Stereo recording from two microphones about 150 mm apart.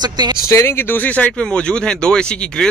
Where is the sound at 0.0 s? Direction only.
30° right (ahead or behind).